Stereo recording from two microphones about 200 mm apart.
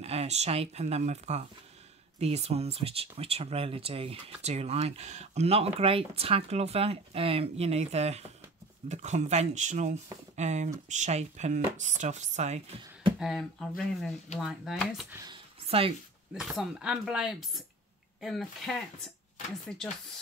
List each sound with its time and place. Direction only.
0.0 s speech: 30° right (ahead or behind)
13.2 s speech: centre (ahead or behind)
15.6 s a sound: 30° right (ahead or behind)
16.3 s speech: 5° right (ahead or behind)